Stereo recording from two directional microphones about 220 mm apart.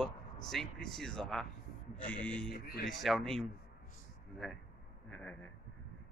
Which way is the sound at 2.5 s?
40° left (ahead or behind).